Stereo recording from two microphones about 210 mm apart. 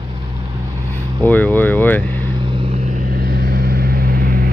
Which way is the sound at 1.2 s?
10° left (ahead or behind).